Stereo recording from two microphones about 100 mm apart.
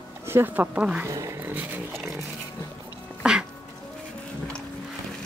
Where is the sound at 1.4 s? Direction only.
20° right (ahead or behind).